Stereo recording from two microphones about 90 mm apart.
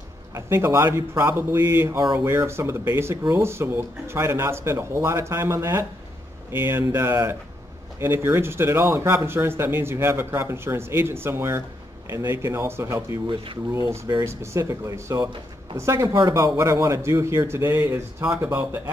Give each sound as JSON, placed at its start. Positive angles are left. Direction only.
{"t": 0.3, "sound": "speech", "side_deg": -30}
{"t": 7.0, "sound": "speech", "side_deg": -30}
{"t": 13.3, "sound": "speech", "side_deg": -75}
{"t": 13.7, "sound": "speech", "side_deg": -30}